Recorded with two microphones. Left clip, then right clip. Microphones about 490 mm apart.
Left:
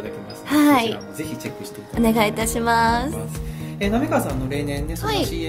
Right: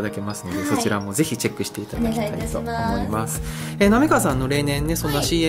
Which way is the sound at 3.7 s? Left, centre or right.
Right.